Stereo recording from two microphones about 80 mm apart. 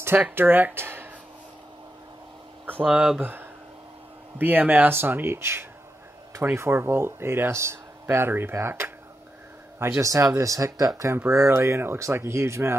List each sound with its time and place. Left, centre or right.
0.3 s speech: right
2.9 s speech: centre
4.4 s speech: right